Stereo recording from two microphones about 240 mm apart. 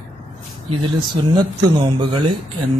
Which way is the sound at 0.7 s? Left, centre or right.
Right.